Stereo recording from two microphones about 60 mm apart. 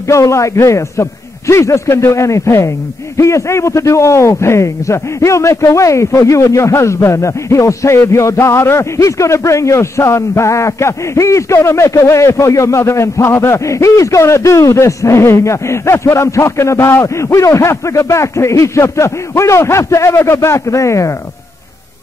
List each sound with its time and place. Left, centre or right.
0.1 s a man's voice: left
17.0 s a man's voice: left